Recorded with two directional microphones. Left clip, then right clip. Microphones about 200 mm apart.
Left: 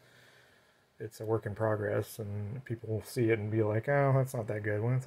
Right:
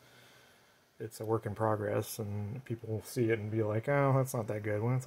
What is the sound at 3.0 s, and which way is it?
Speech, centre (ahead or behind).